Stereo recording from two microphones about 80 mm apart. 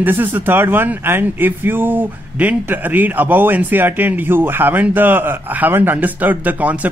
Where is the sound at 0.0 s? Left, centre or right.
Right.